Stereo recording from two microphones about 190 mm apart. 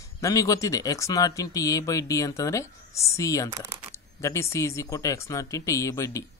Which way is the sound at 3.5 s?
15° right (ahead or behind).